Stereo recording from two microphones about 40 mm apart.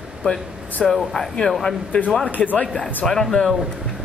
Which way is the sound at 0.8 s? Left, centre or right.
Centre.